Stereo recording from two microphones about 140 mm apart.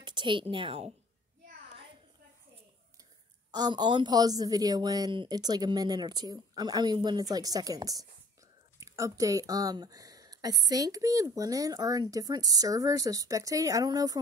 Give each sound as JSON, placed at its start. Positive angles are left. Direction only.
{"t": 0.0, "sound": "a woman's voice", "side_deg": -35}
{"t": 3.5, "sound": "speech", "side_deg": -30}